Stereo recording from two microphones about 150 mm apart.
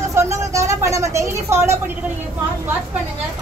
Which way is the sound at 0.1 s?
20° right (ahead or behind).